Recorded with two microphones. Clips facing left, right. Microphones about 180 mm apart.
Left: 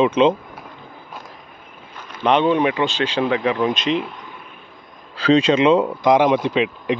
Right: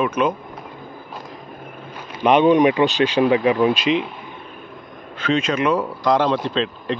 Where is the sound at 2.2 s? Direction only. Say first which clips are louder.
Right 3 dB; 10° right (ahead or behind).